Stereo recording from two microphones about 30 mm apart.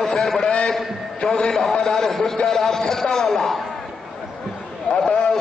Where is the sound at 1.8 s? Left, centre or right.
Centre.